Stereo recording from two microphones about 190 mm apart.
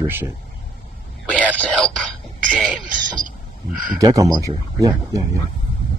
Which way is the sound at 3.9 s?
20° right (ahead or behind).